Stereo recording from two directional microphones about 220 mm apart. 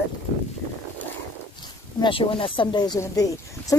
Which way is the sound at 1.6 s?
20° left (ahead or behind).